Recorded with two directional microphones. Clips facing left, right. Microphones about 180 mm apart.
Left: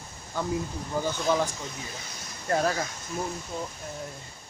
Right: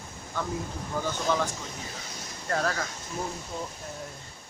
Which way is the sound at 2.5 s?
15° left (ahead or behind).